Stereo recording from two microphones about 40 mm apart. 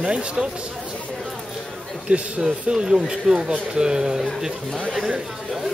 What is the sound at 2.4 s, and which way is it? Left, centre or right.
Speech, centre.